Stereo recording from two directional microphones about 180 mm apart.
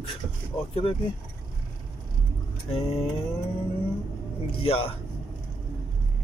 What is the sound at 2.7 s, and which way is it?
Speech, 35° left (ahead or behind).